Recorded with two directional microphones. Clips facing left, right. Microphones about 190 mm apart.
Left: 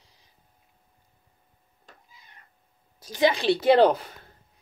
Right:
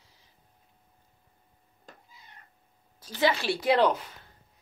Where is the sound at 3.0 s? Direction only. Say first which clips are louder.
Left 4 dB; 15° left (ahead or behind); by 4.1 s 35° left (ahead or behind).